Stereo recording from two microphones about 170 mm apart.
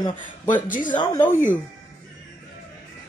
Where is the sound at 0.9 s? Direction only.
25° left (ahead or behind).